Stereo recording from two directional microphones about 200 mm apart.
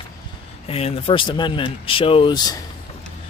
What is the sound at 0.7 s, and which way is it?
Speech, 30° left (ahead or behind).